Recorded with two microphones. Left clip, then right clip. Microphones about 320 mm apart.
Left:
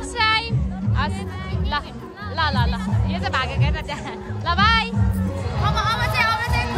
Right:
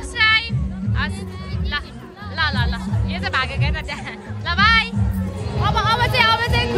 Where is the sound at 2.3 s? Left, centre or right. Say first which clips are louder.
Right 1 dB; centre.